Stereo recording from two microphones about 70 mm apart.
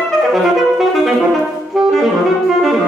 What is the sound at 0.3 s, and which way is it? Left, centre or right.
Saxophone, centre.